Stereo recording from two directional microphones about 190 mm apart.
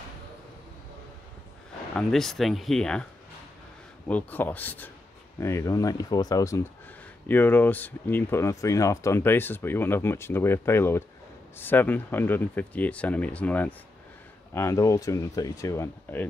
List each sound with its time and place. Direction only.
2.0 s speech: centre (ahead or behind)
4.1 s speech: 10° left (ahead or behind)